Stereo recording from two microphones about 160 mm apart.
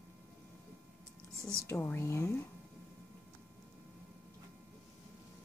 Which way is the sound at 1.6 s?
15° left (ahead or behind).